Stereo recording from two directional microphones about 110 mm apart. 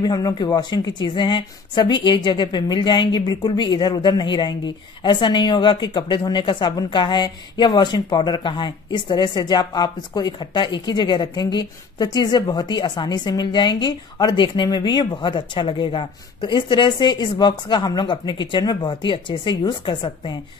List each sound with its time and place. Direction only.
0.0 s speech: 40° left (ahead or behind)